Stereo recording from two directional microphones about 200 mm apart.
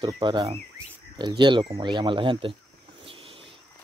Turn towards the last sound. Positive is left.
turn(degrees=-25)  # may be behind; listen again after turning